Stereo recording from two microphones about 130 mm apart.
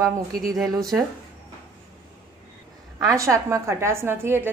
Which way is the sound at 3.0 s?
25° right (ahead or behind).